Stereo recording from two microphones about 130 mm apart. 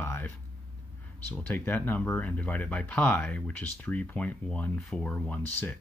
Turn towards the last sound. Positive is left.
turn(degrees=15)  # may be behind; listen again after turning